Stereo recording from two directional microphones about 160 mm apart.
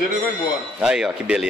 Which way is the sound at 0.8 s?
5° right (ahead or behind).